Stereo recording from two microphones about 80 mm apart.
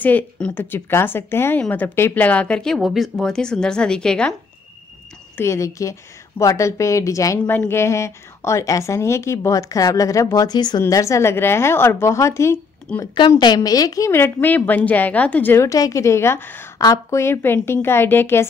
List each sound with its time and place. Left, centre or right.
0.0 s speech: centre
2.2 s speech: centre
2.8 s speech: centre
3.2 s speech: centre
5.4 s a woman's voice: left
7.4 s a woman's voice: left
10.9 s a woman's voice: left
12.9 s speech: centre
13.6 s a woman's voice: left
14.1 s speech: left
15.5 s a woman's voice: left
16.7 s a woman's voice: left